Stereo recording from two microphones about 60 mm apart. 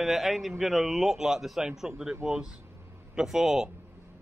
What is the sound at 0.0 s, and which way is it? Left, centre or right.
A man's voice, centre.